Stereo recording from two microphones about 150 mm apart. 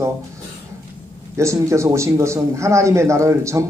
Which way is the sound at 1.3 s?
20° right (ahead or behind).